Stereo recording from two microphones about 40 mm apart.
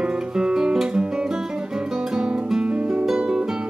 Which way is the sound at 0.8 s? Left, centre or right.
Centre.